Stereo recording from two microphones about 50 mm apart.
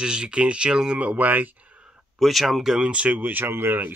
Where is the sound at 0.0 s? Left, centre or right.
Centre; by 1.5 s right.